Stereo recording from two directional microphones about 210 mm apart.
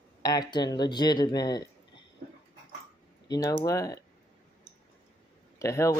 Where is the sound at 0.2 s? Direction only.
20° left (ahead or behind).